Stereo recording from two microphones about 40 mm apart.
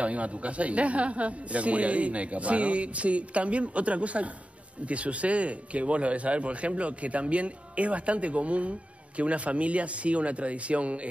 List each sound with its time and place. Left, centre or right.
0.0 s speech: right